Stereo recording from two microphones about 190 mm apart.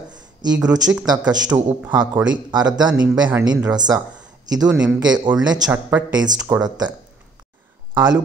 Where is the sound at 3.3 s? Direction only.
20° right (ahead or behind).